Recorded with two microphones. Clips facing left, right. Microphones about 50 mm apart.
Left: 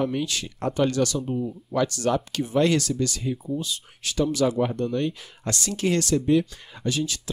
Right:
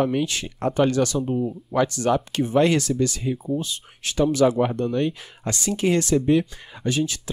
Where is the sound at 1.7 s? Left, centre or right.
Right.